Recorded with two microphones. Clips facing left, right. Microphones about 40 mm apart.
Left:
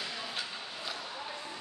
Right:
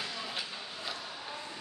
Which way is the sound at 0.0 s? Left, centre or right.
Centre.